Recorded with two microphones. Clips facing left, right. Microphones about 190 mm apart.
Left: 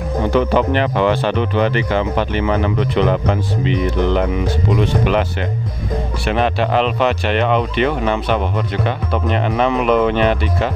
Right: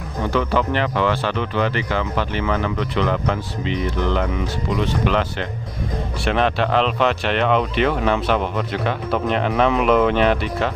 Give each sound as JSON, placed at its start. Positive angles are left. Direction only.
{"t": 0.3, "sound": "speech", "side_deg": 20}
{"t": 6.2, "sound": "speech", "side_deg": 5}